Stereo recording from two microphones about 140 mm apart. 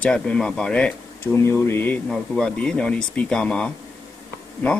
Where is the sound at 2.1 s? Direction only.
5° left (ahead or behind).